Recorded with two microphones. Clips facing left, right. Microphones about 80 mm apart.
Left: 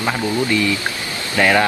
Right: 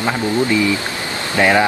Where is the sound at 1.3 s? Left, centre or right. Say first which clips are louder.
Right 1 dB; centre.